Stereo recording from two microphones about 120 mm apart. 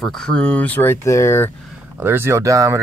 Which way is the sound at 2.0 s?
20° right (ahead or behind).